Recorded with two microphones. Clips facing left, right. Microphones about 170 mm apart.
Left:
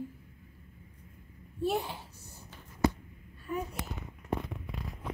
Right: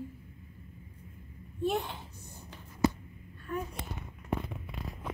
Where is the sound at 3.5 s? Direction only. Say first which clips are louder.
Left 1 dB; 10° left (ahead or behind).